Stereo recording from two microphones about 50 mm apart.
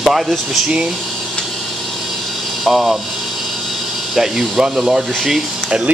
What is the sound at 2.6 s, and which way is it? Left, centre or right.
Speech, centre.